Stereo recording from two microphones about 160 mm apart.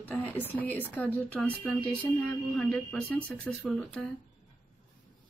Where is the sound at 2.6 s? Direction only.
Centre (ahead or behind).